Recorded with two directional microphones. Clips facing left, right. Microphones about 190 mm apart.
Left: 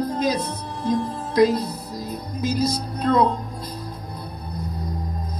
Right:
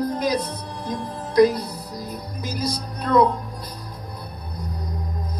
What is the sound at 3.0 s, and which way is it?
Speech, 25° left (ahead or behind).